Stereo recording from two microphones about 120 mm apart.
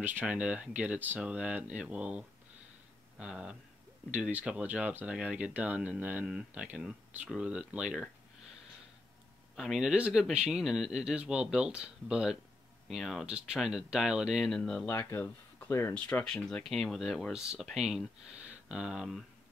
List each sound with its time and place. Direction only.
0.0 s speech: 15° right (ahead or behind)
9.6 s speech: 5° right (ahead or behind)
14.9 s speech: 20° left (ahead or behind)
15.9 s speech: 10° left (ahead or behind)